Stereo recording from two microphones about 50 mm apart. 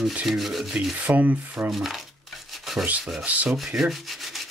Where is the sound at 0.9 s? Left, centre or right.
Right.